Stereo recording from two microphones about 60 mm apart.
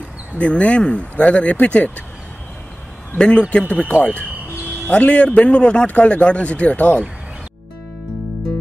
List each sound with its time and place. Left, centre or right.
0.4 s a man's voice: centre
3.2 s a man's voice: centre